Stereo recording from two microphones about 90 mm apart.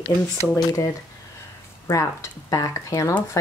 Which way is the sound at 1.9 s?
35° left (ahead or behind).